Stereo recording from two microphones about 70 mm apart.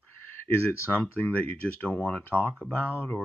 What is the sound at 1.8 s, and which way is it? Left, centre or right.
Speech, left.